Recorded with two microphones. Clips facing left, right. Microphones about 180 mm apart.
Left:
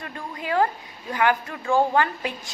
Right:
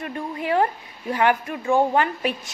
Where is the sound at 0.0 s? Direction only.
20° right (ahead or behind).